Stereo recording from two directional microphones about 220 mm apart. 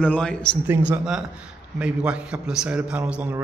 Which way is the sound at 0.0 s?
5° left (ahead or behind).